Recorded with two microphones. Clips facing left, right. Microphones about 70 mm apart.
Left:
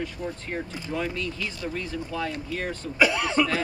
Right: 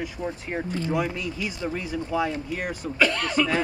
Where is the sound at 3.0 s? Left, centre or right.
Centre.